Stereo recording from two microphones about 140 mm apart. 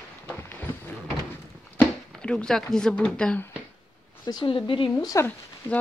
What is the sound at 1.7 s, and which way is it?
Speech, 5° left (ahead or behind).